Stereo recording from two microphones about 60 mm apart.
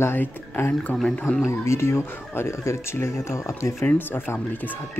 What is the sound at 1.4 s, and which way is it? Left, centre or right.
Speech, left.